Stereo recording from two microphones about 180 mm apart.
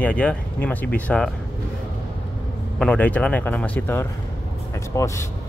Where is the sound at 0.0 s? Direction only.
5° left (ahead or behind).